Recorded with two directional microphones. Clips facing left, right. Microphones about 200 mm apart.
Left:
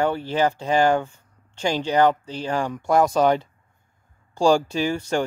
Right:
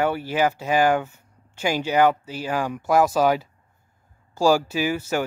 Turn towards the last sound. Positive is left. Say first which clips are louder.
# left 1 dB
turn(degrees=-5)  # may be behind; listen again after turning